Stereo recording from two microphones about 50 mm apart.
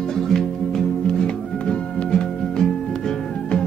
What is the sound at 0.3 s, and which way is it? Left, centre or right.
Music, centre.